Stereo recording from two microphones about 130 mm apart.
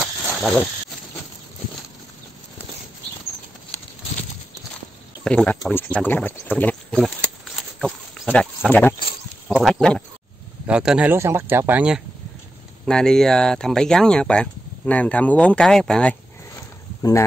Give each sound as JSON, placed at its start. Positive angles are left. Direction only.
{"t": 0.0, "sound": "snake", "side_deg": 0}
{"t": 5.2, "sound": "speech", "side_deg": 5}
{"t": 8.3, "sound": "speech", "side_deg": 10}
{"t": 10.7, "sound": "speech", "side_deg": -5}
{"t": 11.1, "sound": "speech", "side_deg": -20}
{"t": 12.8, "sound": "speech", "side_deg": 5}